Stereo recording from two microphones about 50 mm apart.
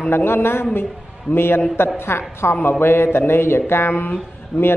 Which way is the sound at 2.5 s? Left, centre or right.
Left.